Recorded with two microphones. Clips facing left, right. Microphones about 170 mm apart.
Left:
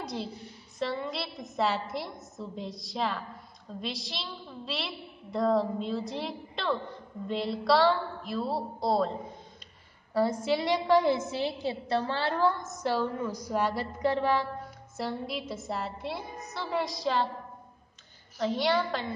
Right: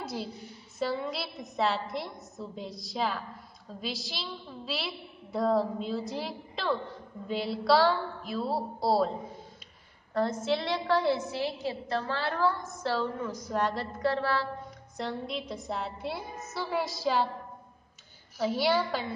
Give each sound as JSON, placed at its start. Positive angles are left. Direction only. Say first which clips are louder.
{"t": 0.0, "sound": "a woman's voice", "louder": "even", "side_deg": 0}
{"t": 10.1, "sound": "a woman's voice", "louder": "left 2 dB", "side_deg": 10}
{"t": 15.0, "sound": "a woman's voice", "louder": "left 1 dB", "side_deg": 5}
{"t": 18.4, "sound": "a woman's voice", "louder": "even", "side_deg": -5}